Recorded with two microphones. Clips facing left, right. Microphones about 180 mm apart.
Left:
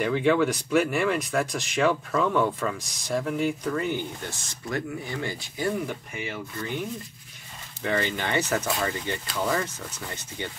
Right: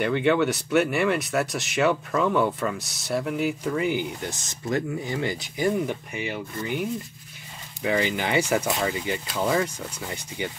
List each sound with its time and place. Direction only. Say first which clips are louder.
0.0 s speech: right 1 dB; centre (ahead or behind)